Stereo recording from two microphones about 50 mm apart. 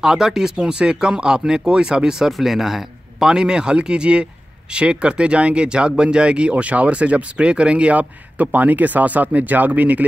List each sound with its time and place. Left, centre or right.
0.0 s speech: centre; by 10.0 s right